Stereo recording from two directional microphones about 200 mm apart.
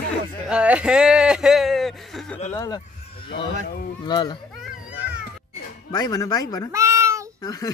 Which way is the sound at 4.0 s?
20° left (ahead or behind).